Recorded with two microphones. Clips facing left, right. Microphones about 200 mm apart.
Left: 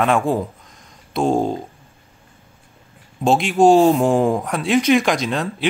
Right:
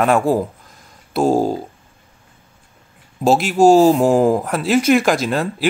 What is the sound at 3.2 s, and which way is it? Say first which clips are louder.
Speech: right 2 dB; 5° right (ahead or behind).